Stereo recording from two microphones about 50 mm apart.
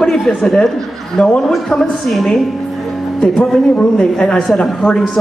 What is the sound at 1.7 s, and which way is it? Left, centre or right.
Speech, centre.